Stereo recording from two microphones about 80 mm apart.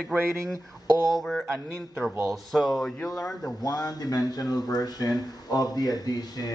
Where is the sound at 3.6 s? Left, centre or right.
Left.